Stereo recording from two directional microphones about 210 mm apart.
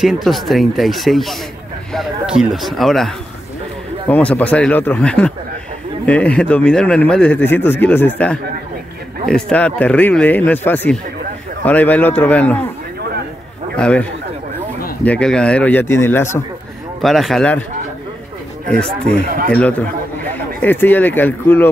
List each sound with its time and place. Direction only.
0.0 s a man's voice: centre (ahead or behind)
9.2 s a man's voice: 5° left (ahead or behind)
13.7 s a man's voice: 5° left (ahead or behind)
15.0 s a man's voice: 5° left (ahead or behind)
17.0 s speech: centre (ahead or behind)
18.9 s speech: 35° right (ahead or behind)
20.3 s speech: 10° left (ahead or behind)